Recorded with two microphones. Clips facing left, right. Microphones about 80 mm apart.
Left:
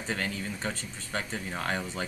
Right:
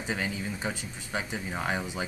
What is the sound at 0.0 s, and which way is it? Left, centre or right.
Speech, centre.